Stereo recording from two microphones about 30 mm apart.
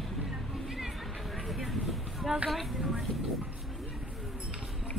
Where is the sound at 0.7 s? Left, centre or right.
Centre.